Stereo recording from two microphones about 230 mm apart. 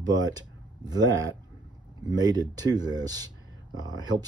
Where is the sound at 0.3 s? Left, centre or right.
Centre.